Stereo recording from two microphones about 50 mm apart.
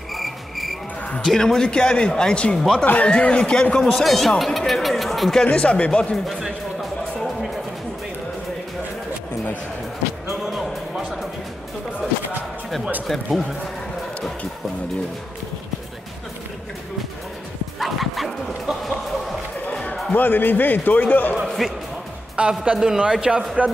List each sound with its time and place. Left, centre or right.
0.1 s cricket: centre
1.2 s speech: centre
4.0 s speech: centre
5.4 s speech: left
6.1 s a sound: centre
13.0 s speech: centre
17.7 s bow-wow: centre
20.1 s a man's voice: left
21.6 s speech: centre
22.3 s speech: right
23.6 s speech: right